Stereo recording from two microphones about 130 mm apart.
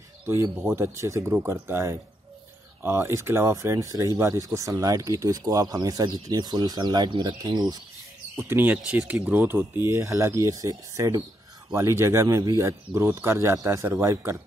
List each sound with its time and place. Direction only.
0.3 s speech: 20° right (ahead or behind)
8.4 s speech: 15° right (ahead or behind)